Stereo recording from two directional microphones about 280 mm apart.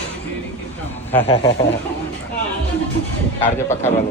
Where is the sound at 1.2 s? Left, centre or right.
Centre.